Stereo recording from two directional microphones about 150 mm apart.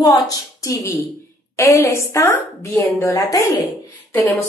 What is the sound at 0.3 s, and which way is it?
A woman's voice, 25° left (ahead or behind).